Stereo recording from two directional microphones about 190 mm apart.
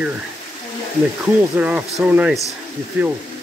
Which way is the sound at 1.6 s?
5° right (ahead or behind).